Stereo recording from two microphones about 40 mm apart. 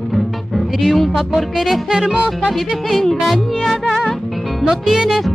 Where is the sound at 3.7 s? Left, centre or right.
Centre.